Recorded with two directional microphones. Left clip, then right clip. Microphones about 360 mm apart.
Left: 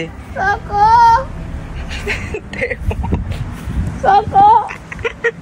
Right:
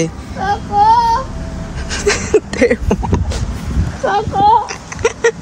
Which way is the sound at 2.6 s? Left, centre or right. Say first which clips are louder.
Right 8 dB; right.